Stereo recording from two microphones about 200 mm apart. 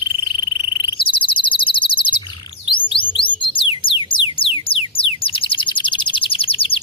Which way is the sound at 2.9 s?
25° left (ahead or behind).